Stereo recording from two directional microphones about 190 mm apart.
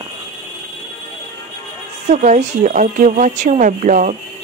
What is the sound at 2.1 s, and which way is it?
Speech, 40° right (ahead or behind).